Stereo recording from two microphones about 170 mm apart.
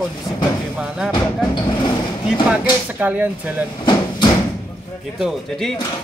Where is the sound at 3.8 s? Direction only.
25° left (ahead or behind).